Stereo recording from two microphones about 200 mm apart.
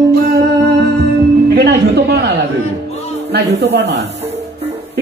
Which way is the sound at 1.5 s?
55° right (ahead or behind).